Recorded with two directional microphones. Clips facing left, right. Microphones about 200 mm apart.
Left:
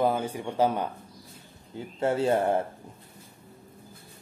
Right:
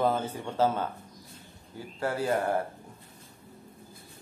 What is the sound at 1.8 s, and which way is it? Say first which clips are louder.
Speech: left 5 dB; 25° left (ahead or behind).